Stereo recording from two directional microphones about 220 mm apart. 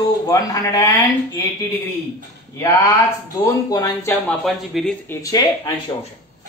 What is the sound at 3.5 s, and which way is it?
Speech, 15° left (ahead or behind).